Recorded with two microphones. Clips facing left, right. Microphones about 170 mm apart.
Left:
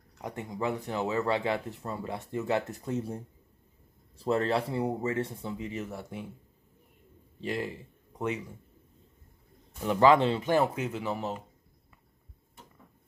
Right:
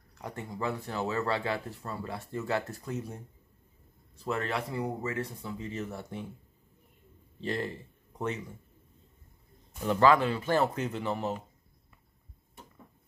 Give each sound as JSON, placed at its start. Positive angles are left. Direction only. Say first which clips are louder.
{"t": 0.2, "sound": "speech", "louder": "left 2 dB", "side_deg": 20}
{"t": 4.2, "sound": "speech", "louder": "left 5 dB", "side_deg": 30}
{"t": 7.4, "sound": "speech", "louder": "even", "side_deg": 10}
{"t": 9.8, "sound": "speech", "louder": "left 2 dB", "side_deg": 15}